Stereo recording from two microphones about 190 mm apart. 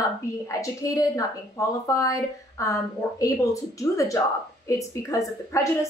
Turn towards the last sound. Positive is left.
turn(degrees=15)  # may be behind; listen again after turning